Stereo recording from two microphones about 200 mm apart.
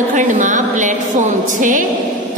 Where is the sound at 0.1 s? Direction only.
40° right (ahead or behind).